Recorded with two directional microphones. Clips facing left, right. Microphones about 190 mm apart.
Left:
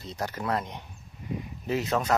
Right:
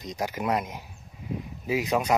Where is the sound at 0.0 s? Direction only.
15° right (ahead or behind).